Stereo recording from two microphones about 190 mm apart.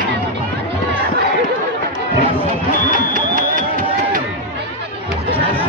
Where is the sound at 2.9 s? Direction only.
45° right (ahead or behind).